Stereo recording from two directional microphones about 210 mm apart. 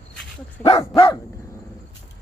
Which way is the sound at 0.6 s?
20° left (ahead or behind).